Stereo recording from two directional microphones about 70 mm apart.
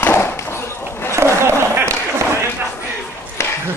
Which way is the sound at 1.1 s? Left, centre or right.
Right.